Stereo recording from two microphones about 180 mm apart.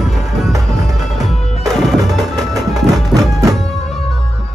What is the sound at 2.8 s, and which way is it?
Music, 20° right (ahead or behind).